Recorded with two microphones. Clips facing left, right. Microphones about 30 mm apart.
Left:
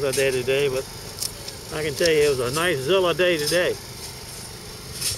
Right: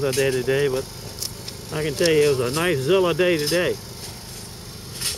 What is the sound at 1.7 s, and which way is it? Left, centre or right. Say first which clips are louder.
Speech: right 1 dB; centre.